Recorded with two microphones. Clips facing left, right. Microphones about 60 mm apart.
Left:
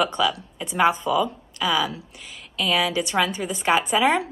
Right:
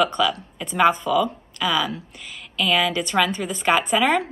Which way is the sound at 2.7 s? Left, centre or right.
Right.